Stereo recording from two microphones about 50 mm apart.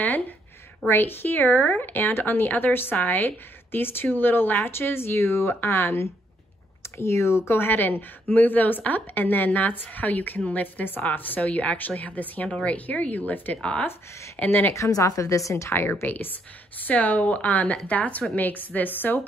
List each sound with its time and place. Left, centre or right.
0.8 s speech: left
13.6 s speech: left
13.8 s speech: left
14.7 s a woman's voice: left
15.7 s speech: left
16.1 s speech: left